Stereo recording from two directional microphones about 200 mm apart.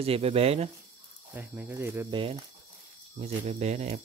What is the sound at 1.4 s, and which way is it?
Speech, 10° right (ahead or behind).